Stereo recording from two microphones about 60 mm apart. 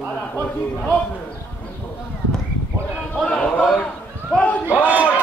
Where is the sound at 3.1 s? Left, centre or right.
Centre.